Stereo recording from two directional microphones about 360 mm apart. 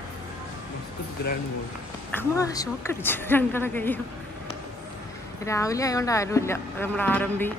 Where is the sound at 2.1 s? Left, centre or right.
Centre.